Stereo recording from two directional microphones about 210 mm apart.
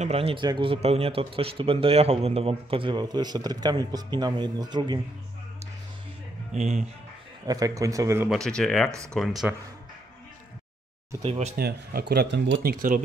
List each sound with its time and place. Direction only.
0.0 s speech: 30° right (ahead or behind)
6.5 s speech: 30° right (ahead or behind)
7.4 s speech: 15° right (ahead or behind)
8.3 s speech: 5° left (ahead or behind)
11.2 s speech: 30° right (ahead or behind)
11.5 s speech: 50° right (ahead or behind)